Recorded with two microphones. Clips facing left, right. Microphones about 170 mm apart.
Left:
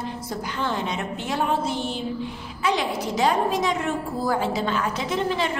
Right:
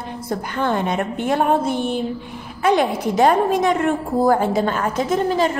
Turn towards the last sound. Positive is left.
turn(degrees=-45)  # may be behind; listen again after turning